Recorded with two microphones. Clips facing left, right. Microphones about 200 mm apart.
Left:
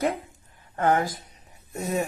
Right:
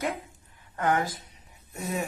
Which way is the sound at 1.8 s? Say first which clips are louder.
Left 4 dB; 40° left (ahead or behind).